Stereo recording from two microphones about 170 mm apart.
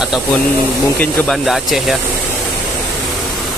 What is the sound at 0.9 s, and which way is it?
Speech, 5° left (ahead or behind).